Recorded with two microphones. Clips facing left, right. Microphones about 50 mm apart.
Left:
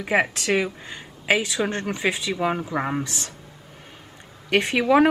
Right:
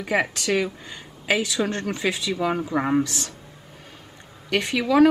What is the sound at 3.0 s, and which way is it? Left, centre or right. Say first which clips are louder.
Speech: right 5 dB; left.